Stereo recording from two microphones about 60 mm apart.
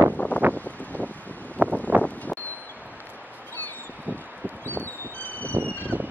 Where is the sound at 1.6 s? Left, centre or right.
Right.